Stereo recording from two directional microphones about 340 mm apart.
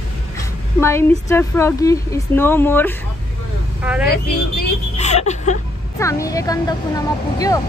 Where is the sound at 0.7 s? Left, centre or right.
Centre.